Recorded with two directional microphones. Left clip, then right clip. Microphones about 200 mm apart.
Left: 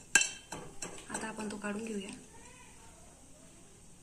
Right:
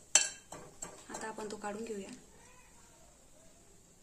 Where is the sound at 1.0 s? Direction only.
50° right (ahead or behind).